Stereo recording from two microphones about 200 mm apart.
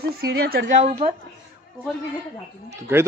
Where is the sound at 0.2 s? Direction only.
50° right (ahead or behind); by 1.1 s 35° right (ahead or behind).